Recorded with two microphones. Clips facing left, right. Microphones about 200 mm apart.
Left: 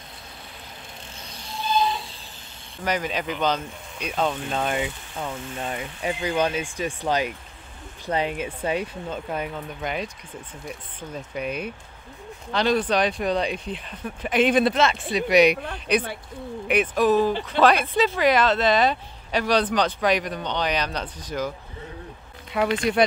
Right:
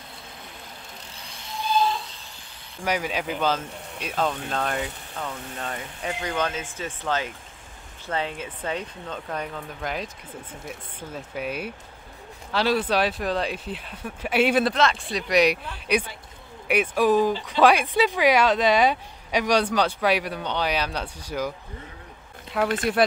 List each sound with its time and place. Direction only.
2.8 s speech: 10° right (ahead or behind)
5.1 s speech: 15° left (ahead or behind); by 14.7 s 5° right (ahead or behind)
14.7 s speech: 5° left (ahead or behind)
15.5 s speech: 55° left (ahead or behind)
16.6 s speech: 10° right (ahead or behind)
22.5 s speech: centre (ahead or behind)